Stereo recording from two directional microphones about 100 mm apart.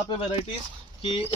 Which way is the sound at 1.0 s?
65° left (ahead or behind).